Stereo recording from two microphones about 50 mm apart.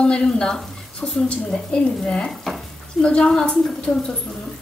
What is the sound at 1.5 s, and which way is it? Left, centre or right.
Stir, centre.